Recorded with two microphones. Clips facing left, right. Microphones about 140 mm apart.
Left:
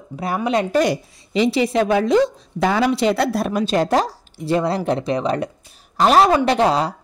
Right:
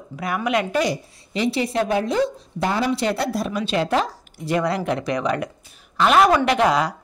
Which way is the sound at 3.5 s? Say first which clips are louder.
Left 4 dB; 45° left (ahead or behind).